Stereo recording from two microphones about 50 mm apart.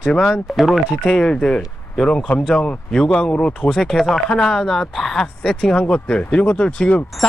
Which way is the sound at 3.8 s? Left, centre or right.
Centre.